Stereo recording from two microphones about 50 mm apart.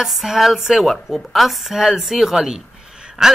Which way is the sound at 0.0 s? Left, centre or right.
Centre.